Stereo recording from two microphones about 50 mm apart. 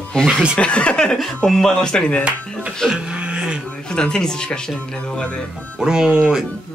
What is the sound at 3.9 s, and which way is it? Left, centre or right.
Speech, centre.